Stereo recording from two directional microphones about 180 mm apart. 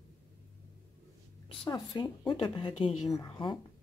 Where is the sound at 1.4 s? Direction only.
20° left (ahead or behind).